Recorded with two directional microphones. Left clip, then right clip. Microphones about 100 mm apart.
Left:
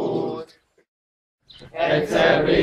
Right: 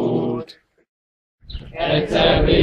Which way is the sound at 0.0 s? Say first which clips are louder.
Right 3 dB; 35° left (ahead or behind).